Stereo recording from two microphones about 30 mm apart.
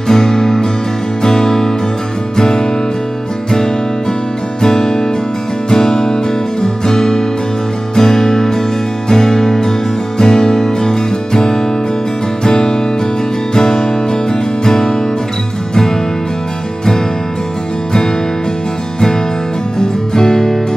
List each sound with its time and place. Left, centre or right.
0.1 s music: centre
4.6 s music: left
19.8 s music: centre